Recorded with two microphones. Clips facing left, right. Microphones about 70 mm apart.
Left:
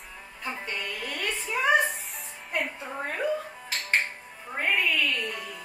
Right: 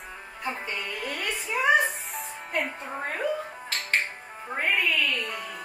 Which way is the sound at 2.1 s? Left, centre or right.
Centre.